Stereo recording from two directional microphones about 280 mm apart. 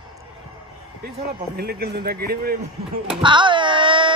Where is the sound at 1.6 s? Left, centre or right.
Right.